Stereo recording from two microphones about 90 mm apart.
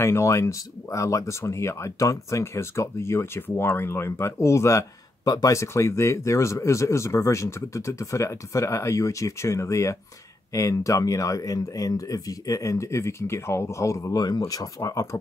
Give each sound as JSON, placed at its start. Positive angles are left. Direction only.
{"t": 0.0, "sound": "speech", "side_deg": 30}